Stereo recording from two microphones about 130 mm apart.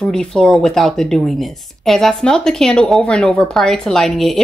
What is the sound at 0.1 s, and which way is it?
Speech, 5° left (ahead or behind).